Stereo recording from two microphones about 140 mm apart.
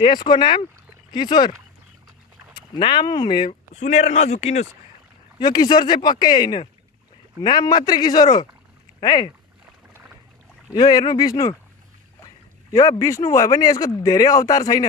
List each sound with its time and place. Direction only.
0.0 s speech: 35° left (ahead or behind)
2.5 s speech: 35° left (ahead or behind)
3.7 s a man's voice: 55° left (ahead or behind)
5.4 s speech: 30° left (ahead or behind)
10.7 s speech: 30° left (ahead or behind)
12.7 s speech: 25° left (ahead or behind)